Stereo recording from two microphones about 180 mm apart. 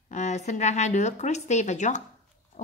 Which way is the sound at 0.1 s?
40° left (ahead or behind).